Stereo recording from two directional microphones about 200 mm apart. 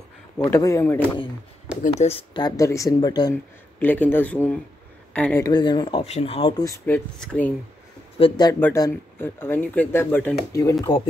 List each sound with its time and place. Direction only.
0.5 s speech: 15° left (ahead or behind)
1.8 s speech: 30° left (ahead or behind)
3.8 s a woman's voice: 10° left (ahead or behind)
5.4 s speech: 20° left (ahead or behind)
7.2 s speech: 10° left (ahead or behind)
8.2 s speech: 20° left (ahead or behind)